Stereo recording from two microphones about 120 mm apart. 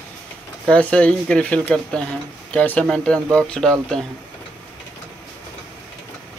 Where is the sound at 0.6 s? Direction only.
10° left (ahead or behind).